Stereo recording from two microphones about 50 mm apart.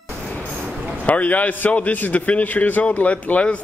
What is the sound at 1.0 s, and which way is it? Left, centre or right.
A man's voice, left.